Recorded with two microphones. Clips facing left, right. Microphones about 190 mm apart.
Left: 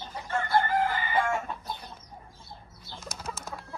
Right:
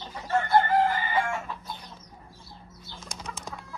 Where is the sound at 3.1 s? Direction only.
5° left (ahead or behind).